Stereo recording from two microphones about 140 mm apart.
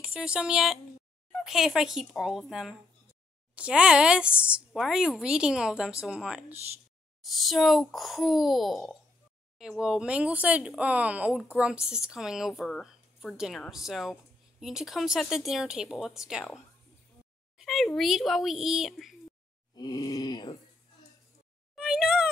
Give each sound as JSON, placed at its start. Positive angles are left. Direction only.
{"t": 0.0, "sound": "speech", "side_deg": -5}
{"t": 19.7, "sound": "speech", "side_deg": 30}
{"t": 21.7, "sound": "a sound", "side_deg": -5}